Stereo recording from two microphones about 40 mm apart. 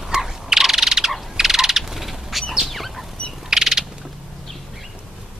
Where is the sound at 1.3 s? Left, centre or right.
Centre.